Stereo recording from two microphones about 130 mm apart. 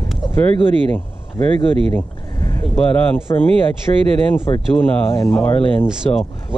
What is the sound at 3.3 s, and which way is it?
Speech, 30° left (ahead or behind).